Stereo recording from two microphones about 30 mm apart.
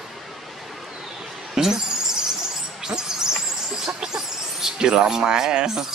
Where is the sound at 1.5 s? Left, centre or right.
Right.